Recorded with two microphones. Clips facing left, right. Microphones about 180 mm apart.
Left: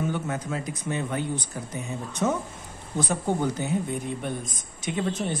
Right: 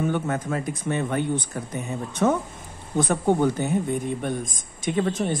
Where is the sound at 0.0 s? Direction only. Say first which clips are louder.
Right 4 dB; 55° right (ahead or behind).